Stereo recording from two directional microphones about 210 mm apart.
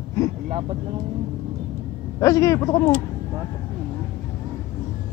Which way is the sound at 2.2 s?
15° left (ahead or behind).